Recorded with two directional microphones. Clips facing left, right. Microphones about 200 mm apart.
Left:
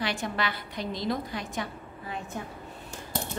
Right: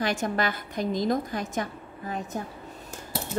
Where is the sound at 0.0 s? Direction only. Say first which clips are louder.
Right 4 dB; 45° right (ahead or behind).